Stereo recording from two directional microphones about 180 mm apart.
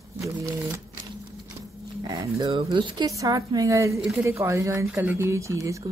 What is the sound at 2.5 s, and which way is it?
A woman's voice, 30° right (ahead or behind).